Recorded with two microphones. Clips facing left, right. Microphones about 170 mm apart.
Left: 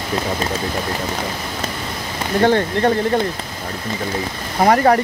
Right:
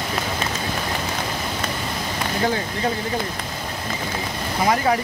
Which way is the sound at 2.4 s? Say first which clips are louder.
Left 9 dB; 70° left (ahead or behind).